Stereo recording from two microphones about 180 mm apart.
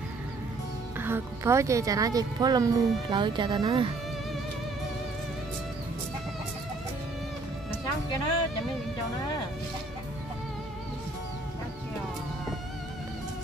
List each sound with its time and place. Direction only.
0.9 s speech: 10° right (ahead or behind)